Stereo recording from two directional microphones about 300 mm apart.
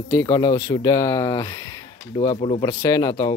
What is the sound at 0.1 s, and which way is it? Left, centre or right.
Speech, centre.